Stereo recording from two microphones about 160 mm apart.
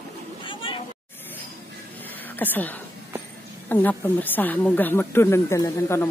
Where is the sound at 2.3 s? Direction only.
10° left (ahead or behind).